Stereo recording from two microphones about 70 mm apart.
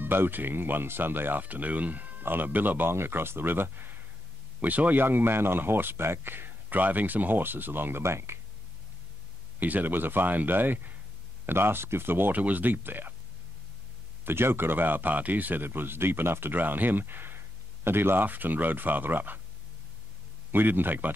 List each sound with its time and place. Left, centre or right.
0.0 s speech: right
9.6 s speech: right
14.2 s speech: right
20.5 s speech: right